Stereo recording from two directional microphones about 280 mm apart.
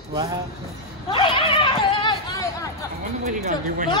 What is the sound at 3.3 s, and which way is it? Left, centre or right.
Speech, right.